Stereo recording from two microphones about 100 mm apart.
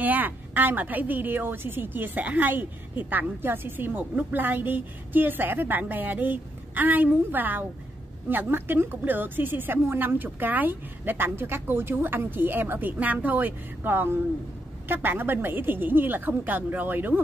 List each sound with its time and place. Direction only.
0.0 s a woman's voice: 15° right (ahead or behind)